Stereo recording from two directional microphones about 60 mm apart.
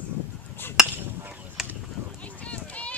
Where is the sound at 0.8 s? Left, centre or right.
Centre.